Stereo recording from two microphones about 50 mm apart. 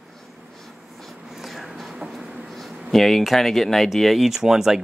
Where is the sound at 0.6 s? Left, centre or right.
Centre.